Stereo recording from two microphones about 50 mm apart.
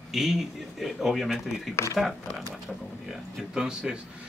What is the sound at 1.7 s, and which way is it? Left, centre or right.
Speech, left.